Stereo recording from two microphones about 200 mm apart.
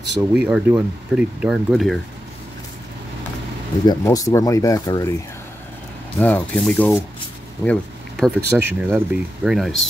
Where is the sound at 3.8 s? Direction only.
20° left (ahead or behind).